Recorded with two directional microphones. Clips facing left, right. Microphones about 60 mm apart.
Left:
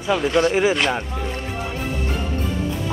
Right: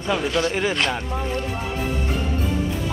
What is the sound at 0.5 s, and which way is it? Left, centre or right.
Speech, centre.